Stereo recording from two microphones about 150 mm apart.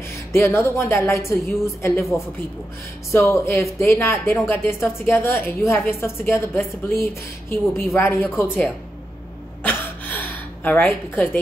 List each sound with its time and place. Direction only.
0.3 s a woman's voice: 20° left (ahead or behind)
3.1 s a woman's voice: 20° left (ahead or behind)
9.6 s a sound: 10° left (ahead or behind)